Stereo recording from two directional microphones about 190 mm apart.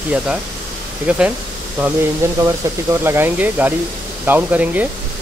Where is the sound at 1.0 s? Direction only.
5° right (ahead or behind).